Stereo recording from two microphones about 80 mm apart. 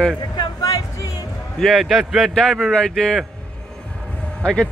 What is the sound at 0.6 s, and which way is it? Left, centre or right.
Music, left.